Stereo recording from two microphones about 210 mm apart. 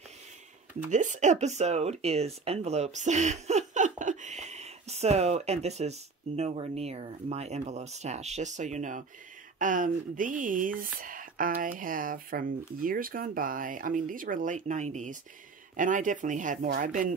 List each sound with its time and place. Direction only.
0.8 s speech: 35° right (ahead or behind)